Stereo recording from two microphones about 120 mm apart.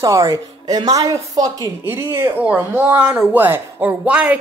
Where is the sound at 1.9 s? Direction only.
15° right (ahead or behind).